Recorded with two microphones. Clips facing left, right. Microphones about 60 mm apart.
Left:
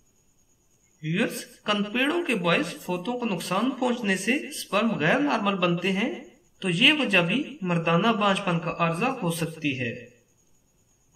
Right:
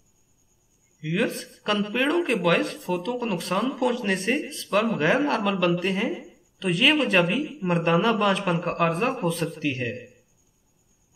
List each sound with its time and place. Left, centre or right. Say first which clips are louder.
1.0 s speech: right 1 dB; centre